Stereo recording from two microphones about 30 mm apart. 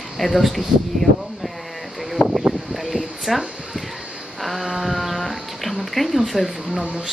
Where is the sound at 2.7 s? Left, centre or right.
Centre.